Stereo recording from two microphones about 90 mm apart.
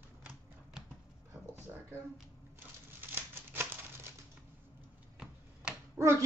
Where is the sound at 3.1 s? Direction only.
25° right (ahead or behind).